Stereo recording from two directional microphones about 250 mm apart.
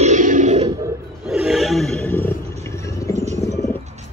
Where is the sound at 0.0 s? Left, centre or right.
Right.